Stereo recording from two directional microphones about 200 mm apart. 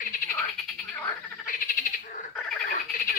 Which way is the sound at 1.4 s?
45° left (ahead or behind).